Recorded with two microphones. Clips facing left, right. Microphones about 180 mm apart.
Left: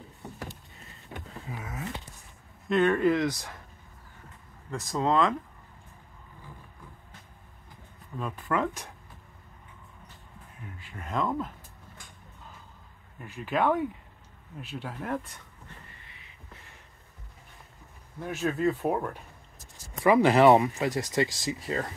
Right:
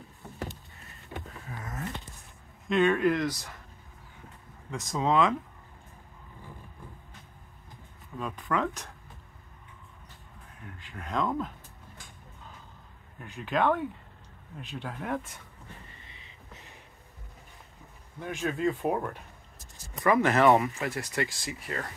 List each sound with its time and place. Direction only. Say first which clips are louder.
1.5 s a sound: even; 5° left (ahead or behind)
2.7 s speech: left 1 dB; centre (ahead or behind)
4.6 s speech: left 1 dB; centre (ahead or behind)
8.2 s speech: left 1 dB; 5° left (ahead or behind)
10.6 s speech: even; centre (ahead or behind)
13.2 s speech: even; 5° left (ahead or behind)
16.1 s a sound: right 1 dB; 20° right (ahead or behind)
18.2 s speech: left 2 dB; 5° left (ahead or behind)
20.0 s speech: left 3 dB; 15° left (ahead or behind)